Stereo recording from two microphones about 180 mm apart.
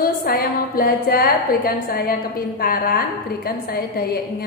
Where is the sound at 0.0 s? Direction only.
55° left (ahead or behind).